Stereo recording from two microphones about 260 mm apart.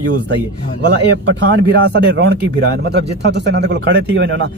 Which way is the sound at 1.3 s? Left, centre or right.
Right.